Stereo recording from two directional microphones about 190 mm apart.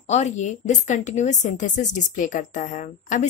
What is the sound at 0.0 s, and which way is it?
A woman's voice, 35° left (ahead or behind).